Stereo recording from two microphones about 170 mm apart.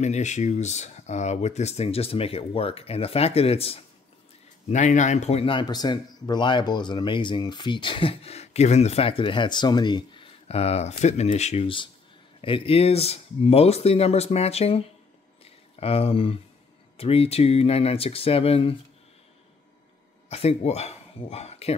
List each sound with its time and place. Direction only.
0.0 s speech: 45° left (ahead or behind)
15.4 s a sound: 35° left (ahead or behind)
16.9 s speech: 35° left (ahead or behind)
20.2 s speech: 40° left (ahead or behind)